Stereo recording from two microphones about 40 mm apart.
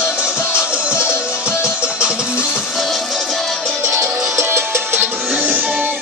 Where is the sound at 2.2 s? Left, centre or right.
Left.